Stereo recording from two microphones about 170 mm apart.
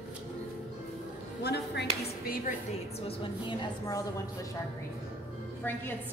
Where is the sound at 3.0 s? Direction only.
30° left (ahead or behind).